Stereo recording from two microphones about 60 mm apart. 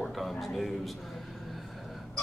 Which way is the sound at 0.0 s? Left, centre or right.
Centre.